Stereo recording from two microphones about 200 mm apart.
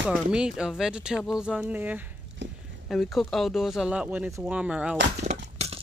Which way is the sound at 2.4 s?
60° right (ahead or behind).